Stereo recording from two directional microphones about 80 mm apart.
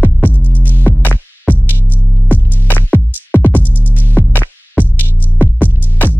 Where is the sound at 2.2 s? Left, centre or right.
Left.